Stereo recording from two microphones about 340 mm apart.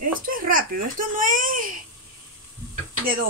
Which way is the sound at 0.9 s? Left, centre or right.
Right.